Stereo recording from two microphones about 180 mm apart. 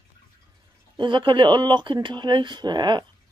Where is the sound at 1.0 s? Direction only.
25° right (ahead or behind).